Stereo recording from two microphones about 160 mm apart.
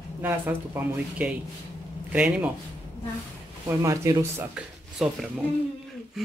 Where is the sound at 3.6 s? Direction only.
20° right (ahead or behind).